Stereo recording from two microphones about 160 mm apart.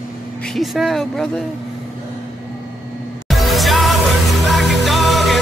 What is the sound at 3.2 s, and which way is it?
Music, centre (ahead or behind).